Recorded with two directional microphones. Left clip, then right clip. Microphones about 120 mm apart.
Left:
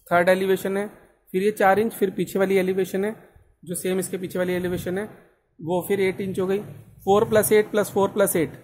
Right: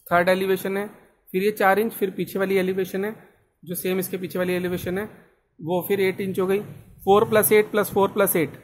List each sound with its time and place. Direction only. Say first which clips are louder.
0.1 s a man's voice: left 1 dB; 10° left (ahead or behind)